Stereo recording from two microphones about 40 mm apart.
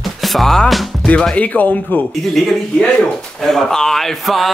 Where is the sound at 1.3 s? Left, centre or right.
Left.